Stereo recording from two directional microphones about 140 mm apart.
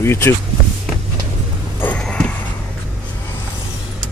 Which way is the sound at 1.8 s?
10° left (ahead or behind).